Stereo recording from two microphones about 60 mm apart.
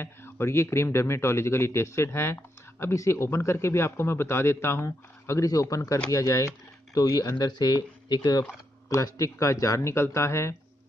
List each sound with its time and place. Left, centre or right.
0.0 s speech: left
5.5 s speech: left
9.0 s speech: left